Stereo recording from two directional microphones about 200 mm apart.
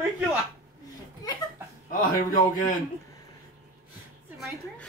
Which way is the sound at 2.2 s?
45° left (ahead or behind).